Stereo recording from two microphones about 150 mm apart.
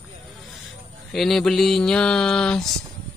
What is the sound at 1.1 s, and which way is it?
A man's voice, centre (ahead or behind).